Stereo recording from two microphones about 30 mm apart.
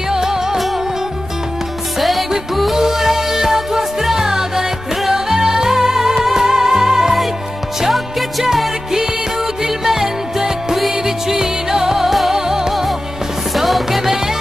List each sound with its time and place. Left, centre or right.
0.1 s music: centre
2.0 s music: centre
2.7 s music: centre
7.9 s music: centre
9.6 s music: centre
13.6 s music: centre